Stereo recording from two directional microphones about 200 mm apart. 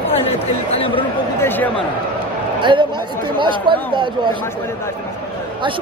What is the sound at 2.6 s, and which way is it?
A man's voice, 25° right (ahead or behind).